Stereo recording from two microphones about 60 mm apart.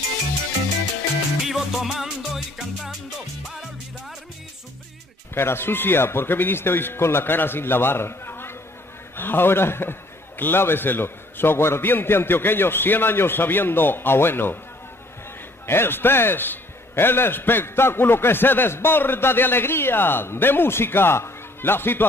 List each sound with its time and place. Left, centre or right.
1.4 s music: centre
5.3 s a man's voice: left
15.6 s a man's voice: left